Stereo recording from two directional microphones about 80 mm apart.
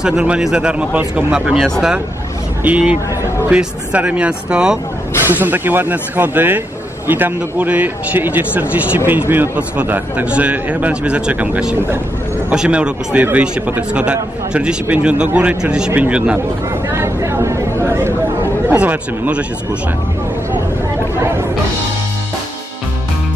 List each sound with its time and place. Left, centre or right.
0.0 s a man's voice: centre
5.2 s a man's voice: right
16.9 s a sound: right
18.8 s speech: centre
21.2 s music: right